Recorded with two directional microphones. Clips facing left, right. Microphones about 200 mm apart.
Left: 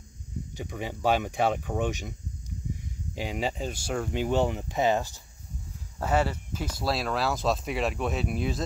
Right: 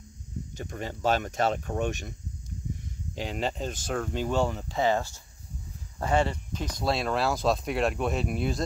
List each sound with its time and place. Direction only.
0.6 s speech: 10° left (ahead or behind)
3.2 s speech: 10° left (ahead or behind)
5.9 s speech: 5° left (ahead or behind)